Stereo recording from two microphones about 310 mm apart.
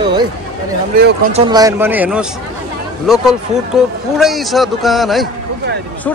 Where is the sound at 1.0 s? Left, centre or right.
Right.